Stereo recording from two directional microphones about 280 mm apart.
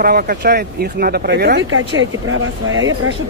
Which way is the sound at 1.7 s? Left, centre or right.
Right.